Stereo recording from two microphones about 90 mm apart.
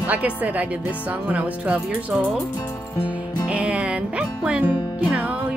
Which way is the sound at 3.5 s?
10° right (ahead or behind).